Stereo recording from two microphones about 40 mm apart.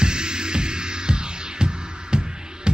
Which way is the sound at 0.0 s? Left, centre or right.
Right.